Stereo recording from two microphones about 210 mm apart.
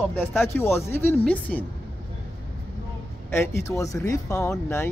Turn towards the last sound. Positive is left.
turn(degrees=10)  # may be behind; listen again after turning